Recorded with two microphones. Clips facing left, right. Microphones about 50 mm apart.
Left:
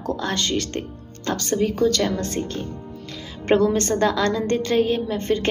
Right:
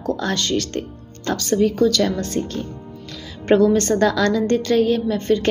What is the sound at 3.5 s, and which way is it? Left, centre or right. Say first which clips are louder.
A woman's voice: right 3 dB; left.